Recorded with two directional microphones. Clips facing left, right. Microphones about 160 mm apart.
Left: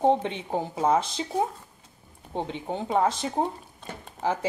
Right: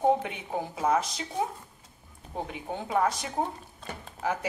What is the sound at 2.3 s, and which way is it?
Speech, 25° left (ahead or behind).